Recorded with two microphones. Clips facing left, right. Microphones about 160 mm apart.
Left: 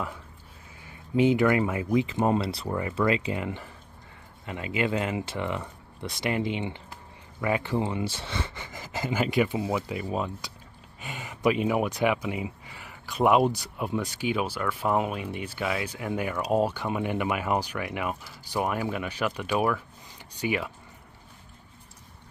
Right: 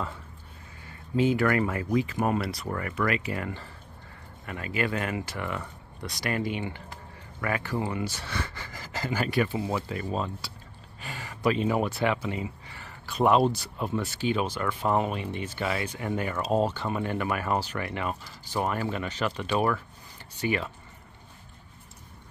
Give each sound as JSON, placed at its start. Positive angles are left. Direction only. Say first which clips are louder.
{"t": 0.8, "sound": "speech", "louder": "left 2 dB", "side_deg": 20}